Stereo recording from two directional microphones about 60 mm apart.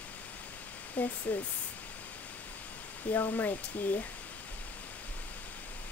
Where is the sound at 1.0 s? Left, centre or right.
Left.